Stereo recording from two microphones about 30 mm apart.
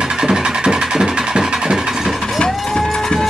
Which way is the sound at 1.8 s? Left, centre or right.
Centre.